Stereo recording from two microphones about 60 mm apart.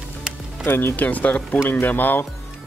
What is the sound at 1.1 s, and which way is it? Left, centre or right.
Speech, left.